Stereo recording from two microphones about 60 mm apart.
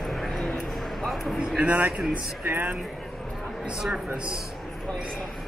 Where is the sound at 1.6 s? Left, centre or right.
Right.